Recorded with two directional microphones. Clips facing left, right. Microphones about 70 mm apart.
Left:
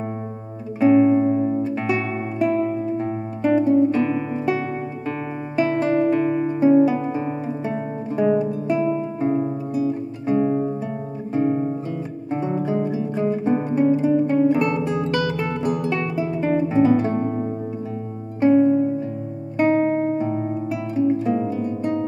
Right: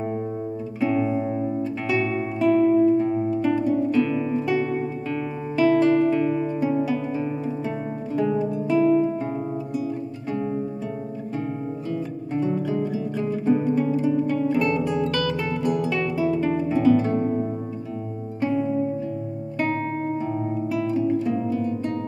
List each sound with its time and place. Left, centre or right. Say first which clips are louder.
0.7 s music: left 8 dB; left
11.3 s guitar: left 10 dB; left
12.3 s music: left 2 dB; left
15.9 s guitar: right 1 dB; left
18.4 s music: left 9 dB; left
19.5 s guitar: left 8 dB; left